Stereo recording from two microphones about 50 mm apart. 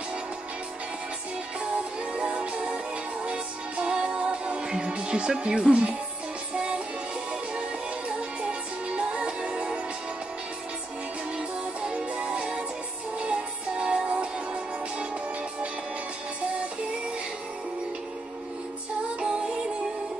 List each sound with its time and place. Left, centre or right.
2.1 s music: centre
8.4 s music: right
11.8 s music: right
19.1 s music: centre